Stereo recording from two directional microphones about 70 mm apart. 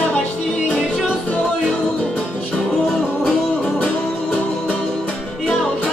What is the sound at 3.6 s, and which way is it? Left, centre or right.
Music, centre.